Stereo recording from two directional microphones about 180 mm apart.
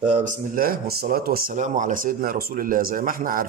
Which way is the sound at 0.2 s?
50° right (ahead or behind).